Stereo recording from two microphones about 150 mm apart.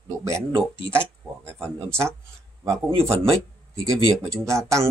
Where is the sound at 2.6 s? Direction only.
20° right (ahead or behind).